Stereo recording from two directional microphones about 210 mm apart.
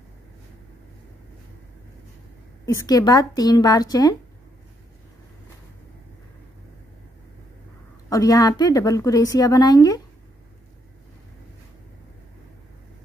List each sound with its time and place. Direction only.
2.6 s a woman's voice: 15° left (ahead or behind)
8.1 s a woman's voice: 15° left (ahead or behind)